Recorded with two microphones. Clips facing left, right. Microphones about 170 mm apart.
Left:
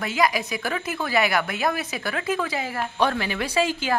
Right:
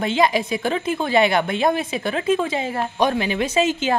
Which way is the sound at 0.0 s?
25° right (ahead or behind).